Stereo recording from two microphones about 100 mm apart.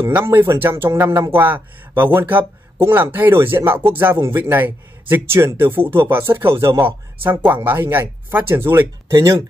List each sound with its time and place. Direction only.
0.1 s a man's voice: 20° right (ahead or behind)